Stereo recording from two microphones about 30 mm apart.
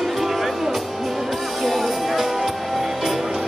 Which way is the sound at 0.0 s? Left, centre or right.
Centre.